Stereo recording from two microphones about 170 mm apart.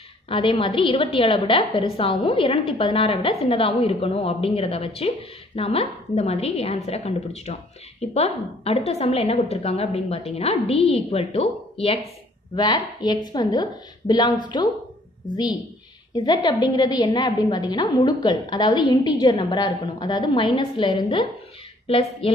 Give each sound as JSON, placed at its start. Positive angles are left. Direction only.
{"t": 0.3, "sound": "a woman's voice", "side_deg": 30}
{"t": 12.5, "sound": "a woman's voice", "side_deg": 25}
{"t": 16.2, "sound": "a woman's voice", "side_deg": 25}